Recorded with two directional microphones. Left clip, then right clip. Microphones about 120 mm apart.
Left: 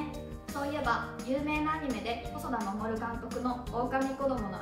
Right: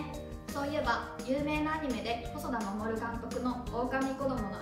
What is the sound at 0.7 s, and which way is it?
A woman's voice, 30° left (ahead or behind).